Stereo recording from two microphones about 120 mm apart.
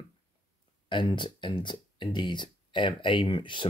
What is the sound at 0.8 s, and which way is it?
Speech, 40° left (ahead or behind).